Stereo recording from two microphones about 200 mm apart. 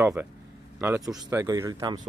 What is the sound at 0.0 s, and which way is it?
Speech, 10° right (ahead or behind).